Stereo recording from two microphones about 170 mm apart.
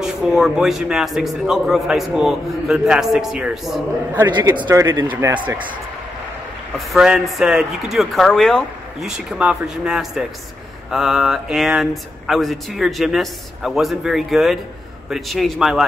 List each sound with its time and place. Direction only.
0.0 s a man's voice: 5° right (ahead or behind)
4.3 s a man's voice: 25° right (ahead or behind); by 5.4 s 10° right (ahead or behind)
6.9 s a man's voice: centre (ahead or behind)